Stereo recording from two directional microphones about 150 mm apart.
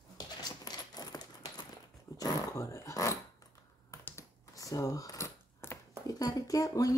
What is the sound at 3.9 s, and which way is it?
Coin, 20° left (ahead or behind).